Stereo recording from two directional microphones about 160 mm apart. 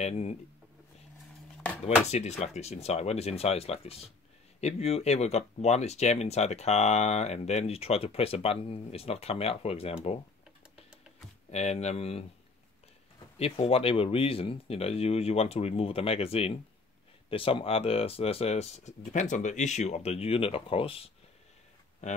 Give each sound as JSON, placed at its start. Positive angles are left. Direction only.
{"t": 0.0, "sound": "speech", "side_deg": 40}
{"t": 1.6, "sound": "a sound", "side_deg": 5}
{"t": 2.0, "sound": "speech", "side_deg": 45}
{"t": 11.5, "sound": "speech", "side_deg": 45}
{"t": 13.4, "sound": "speech", "side_deg": 35}
{"t": 22.0, "sound": "speech", "side_deg": 45}